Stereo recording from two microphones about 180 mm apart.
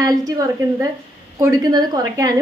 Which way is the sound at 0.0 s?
20° right (ahead or behind).